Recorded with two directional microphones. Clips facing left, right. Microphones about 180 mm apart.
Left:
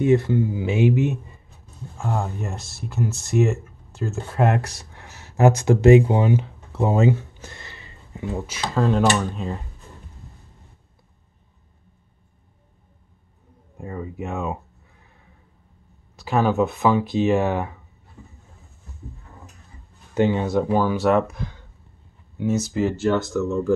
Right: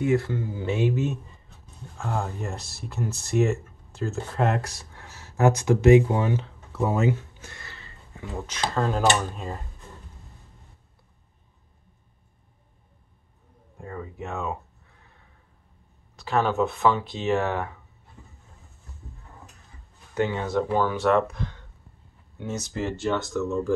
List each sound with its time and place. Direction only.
0.0 s speech: 20° left (ahead or behind)
2.0 s speech: 5° left (ahead or behind)
4.9 s speech: 20° left (ahead or behind)
7.7 s a sound: 15° left (ahead or behind)
8.5 s speech: centre (ahead or behind)
13.7 s speech: 15° left (ahead or behind)
16.2 s speech: 10° left (ahead or behind)
20.2 s speech: 20° left (ahead or behind)